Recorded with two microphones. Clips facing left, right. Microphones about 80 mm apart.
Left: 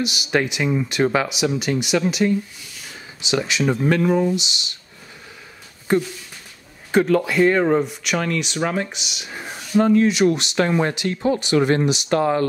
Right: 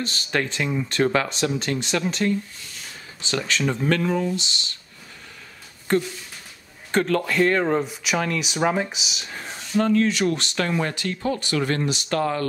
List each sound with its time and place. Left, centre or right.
0.0 s speech: centre
5.9 s speech: centre